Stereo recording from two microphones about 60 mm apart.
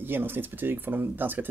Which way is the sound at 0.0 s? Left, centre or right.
Right.